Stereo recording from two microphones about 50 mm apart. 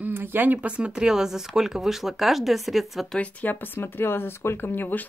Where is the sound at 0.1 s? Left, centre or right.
Right; by 3.1 s centre.